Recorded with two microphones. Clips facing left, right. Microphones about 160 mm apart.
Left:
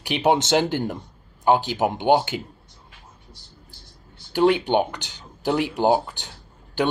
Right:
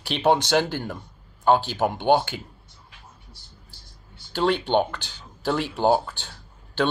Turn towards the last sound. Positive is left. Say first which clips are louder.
# left 1 dB
turn(degrees=15)  # may be behind; listen again after turning